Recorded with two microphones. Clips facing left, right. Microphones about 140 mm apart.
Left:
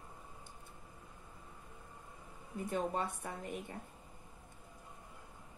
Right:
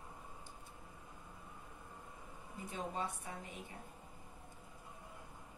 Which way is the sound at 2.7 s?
55° left (ahead or behind).